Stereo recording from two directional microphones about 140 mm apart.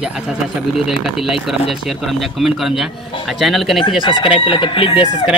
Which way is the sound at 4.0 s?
35° left (ahead or behind).